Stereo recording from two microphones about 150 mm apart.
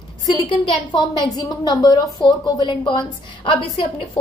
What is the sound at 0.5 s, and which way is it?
A woman's voice, 30° left (ahead or behind).